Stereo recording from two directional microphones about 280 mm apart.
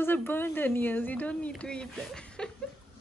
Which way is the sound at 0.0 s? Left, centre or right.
Centre.